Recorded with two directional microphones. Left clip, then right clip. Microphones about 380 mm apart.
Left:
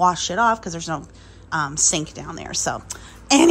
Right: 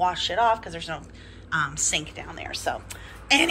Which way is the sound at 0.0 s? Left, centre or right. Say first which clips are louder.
Left 4 dB; centre.